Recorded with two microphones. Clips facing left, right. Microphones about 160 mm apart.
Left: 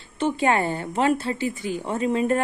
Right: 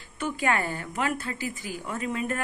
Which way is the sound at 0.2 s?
25° left (ahead or behind).